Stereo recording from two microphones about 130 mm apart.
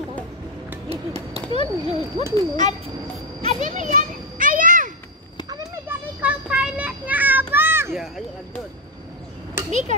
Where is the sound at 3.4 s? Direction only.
75° right (ahead or behind); by 4.9 s 90° right.